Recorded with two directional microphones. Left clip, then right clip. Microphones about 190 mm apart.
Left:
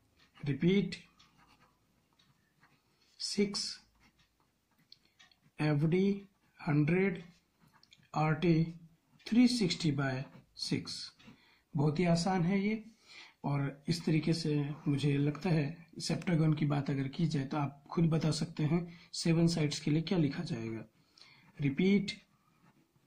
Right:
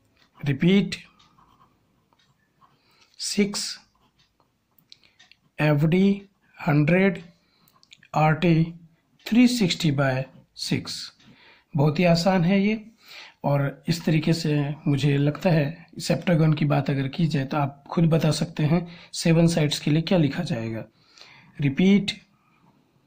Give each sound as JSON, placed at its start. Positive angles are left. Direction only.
{"t": 0.4, "sound": "speech", "side_deg": -35}
{"t": 5.6, "sound": "speech", "side_deg": -30}